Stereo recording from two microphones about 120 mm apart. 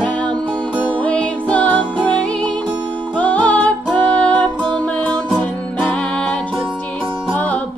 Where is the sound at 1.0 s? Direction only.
10° left (ahead or behind).